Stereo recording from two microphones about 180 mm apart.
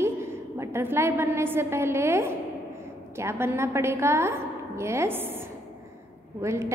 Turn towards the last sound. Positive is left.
turn(degrees=-15)  # may be behind; listen again after turning